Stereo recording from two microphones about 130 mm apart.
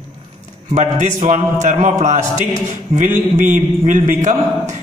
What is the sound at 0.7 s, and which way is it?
A man's voice, 65° right (ahead or behind).